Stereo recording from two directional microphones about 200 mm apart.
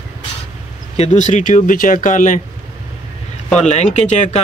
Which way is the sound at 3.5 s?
35° left (ahead or behind).